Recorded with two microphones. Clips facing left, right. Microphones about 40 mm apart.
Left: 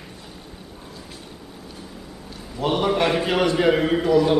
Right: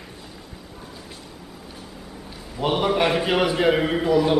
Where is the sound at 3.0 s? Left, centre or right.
Centre.